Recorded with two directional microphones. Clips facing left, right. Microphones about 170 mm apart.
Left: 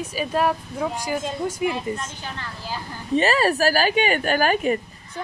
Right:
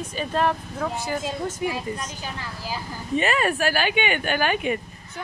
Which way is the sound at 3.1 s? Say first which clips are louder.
Left 3 dB; 35° left (ahead or behind).